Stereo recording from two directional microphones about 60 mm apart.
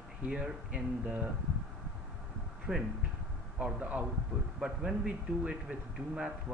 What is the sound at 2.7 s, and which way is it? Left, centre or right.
A man's voice, centre.